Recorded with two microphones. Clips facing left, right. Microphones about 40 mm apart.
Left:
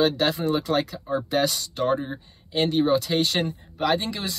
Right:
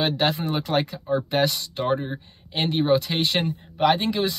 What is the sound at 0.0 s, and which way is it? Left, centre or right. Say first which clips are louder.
Speech: left 1 dB; right.